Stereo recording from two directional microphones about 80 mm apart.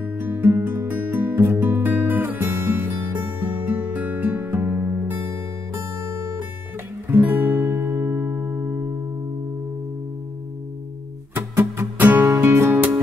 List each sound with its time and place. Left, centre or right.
0.0 s music: right
7.1 s music: right
11.3 s music: right